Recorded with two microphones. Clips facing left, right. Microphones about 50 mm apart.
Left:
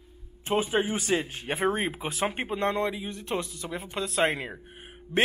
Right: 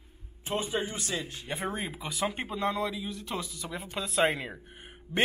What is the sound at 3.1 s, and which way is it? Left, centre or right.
Speech, left.